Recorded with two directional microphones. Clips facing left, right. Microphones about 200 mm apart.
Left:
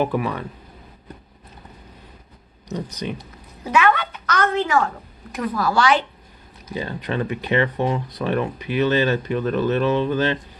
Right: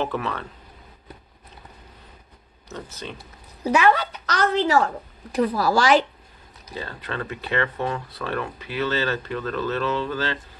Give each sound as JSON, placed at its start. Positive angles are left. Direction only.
{"t": 0.0, "sound": "speech", "side_deg": 15}
{"t": 2.7, "sound": "speech", "side_deg": 15}
{"t": 3.6, "sound": "a woman's voice", "side_deg": -35}
{"t": 6.7, "sound": "speech", "side_deg": 15}